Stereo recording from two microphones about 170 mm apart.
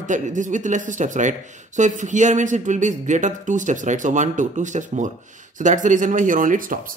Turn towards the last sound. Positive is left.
turn(degrees=-50)  # may be behind; listen again after turning